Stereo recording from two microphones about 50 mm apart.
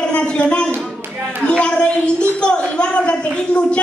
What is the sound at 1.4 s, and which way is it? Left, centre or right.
A woman's voice, centre.